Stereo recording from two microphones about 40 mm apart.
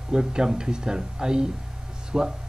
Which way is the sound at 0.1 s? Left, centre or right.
Centre.